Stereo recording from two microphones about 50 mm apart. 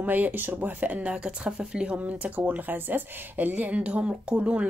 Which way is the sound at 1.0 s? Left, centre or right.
Right.